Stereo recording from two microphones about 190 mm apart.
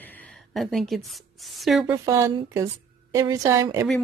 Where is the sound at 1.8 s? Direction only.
15° right (ahead or behind).